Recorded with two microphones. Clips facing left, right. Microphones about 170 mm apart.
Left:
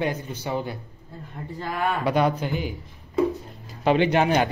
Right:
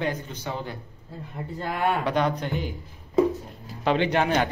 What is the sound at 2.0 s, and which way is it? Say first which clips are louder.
Speech: left 3 dB; 10° left (ahead or behind).